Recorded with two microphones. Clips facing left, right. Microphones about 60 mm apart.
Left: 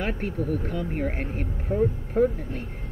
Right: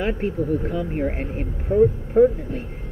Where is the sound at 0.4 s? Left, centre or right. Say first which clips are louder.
Right 5 dB; centre.